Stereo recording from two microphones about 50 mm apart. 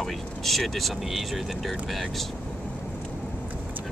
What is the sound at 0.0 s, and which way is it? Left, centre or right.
Speech, centre.